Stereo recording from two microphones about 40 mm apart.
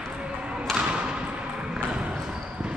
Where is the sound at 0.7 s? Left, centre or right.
Centre.